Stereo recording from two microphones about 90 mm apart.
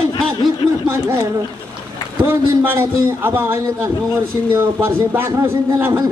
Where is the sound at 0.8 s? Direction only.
30° right (ahead or behind).